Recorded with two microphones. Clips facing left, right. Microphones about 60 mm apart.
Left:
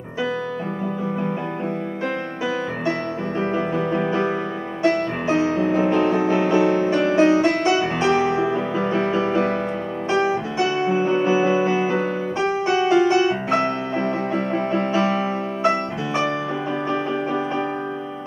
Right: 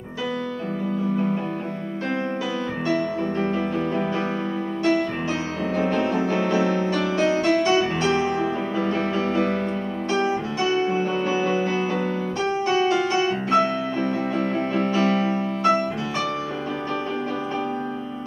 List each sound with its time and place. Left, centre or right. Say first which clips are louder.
3.5 s music: left 2 dB; left
10.7 s music: left 2 dB; left